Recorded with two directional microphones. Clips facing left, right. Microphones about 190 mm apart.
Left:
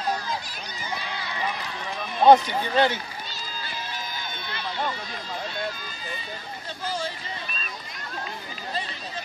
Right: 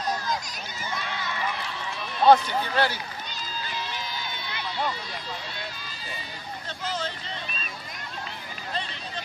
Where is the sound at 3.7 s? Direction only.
50° left (ahead or behind).